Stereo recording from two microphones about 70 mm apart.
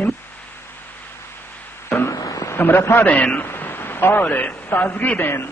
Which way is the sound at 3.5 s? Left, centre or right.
Left.